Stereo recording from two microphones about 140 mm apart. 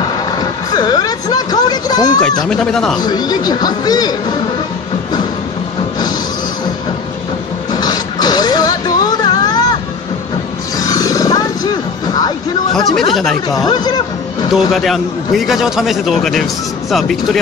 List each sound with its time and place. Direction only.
0.4 s music: 30° left (ahead or behind)
2.5 s a man's voice: 5° left (ahead or behind)
3.0 s speech: 30° left (ahead or behind)
7.7 s music: 30° left (ahead or behind)
10.8 s roaring cats: 25° left (ahead or behind)
12.7 s a man's voice: 5° left (ahead or behind)
13.7 s speech: 30° left (ahead or behind)
14.5 s a man's voice: centre (ahead or behind)